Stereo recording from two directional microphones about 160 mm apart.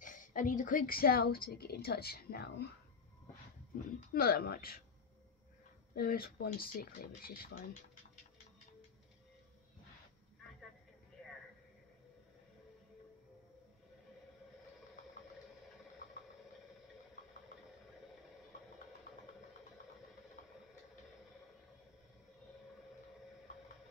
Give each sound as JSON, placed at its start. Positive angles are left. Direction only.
{"t": 0.0, "sound": "a woman's voice", "side_deg": 55}
{"t": 3.7, "sound": "a woman's voice", "side_deg": 70}
{"t": 5.9, "sound": "speech", "side_deg": 65}